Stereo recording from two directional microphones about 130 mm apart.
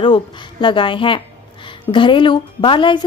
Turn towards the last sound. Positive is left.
turn(degrees=40)  # may be behind; listen again after turning